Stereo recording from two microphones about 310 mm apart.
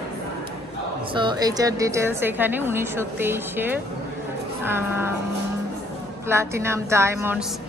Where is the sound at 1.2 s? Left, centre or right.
Centre.